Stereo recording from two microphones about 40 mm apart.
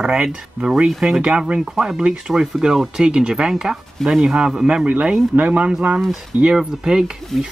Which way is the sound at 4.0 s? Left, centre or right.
Centre.